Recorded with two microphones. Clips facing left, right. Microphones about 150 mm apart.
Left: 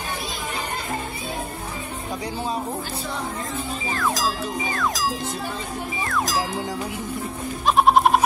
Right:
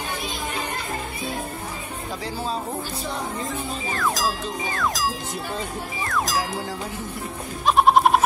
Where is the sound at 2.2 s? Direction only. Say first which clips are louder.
Even; 15° left (ahead or behind).